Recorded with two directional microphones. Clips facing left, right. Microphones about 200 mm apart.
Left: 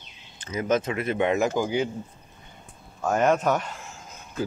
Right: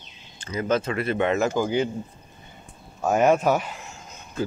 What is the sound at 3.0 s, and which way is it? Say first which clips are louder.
Speech: right 3 dB; 10° right (ahead or behind).